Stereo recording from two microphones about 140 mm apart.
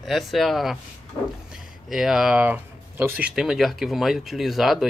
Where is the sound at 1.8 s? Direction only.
Centre (ahead or behind).